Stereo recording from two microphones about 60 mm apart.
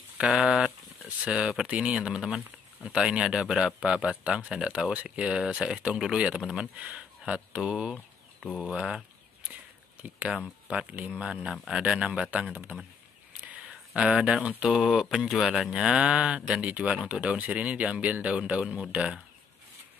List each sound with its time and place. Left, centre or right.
0.2 s speech: centre
6.8 s speech: right
10.0 s speech: right
10.7 s speech: centre
13.4 s a sound: right
14.0 s speech: centre